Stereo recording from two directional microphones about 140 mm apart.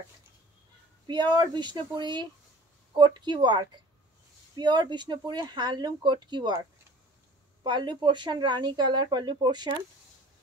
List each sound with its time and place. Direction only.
1.0 s speech: 30° right (ahead or behind)
7.6 s speech: 35° right (ahead or behind)